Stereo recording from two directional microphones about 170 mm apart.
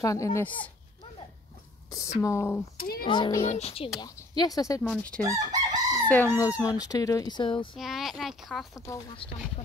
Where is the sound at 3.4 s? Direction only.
40° left (ahead or behind).